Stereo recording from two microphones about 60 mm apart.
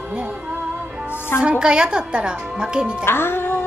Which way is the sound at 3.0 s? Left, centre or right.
Left.